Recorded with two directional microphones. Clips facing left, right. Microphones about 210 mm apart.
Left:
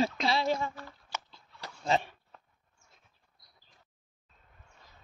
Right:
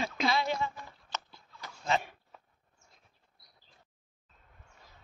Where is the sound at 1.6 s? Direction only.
35° left (ahead or behind).